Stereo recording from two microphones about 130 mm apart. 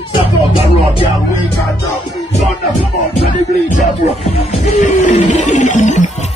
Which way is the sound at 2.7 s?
75° left (ahead or behind).